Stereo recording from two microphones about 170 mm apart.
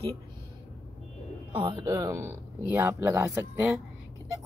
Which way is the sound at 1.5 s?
30° right (ahead or behind).